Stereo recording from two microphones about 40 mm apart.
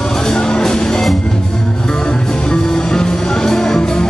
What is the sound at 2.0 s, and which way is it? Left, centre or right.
Music, centre.